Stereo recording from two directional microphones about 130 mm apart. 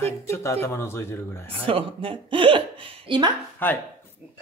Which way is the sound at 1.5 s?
45° right (ahead or behind).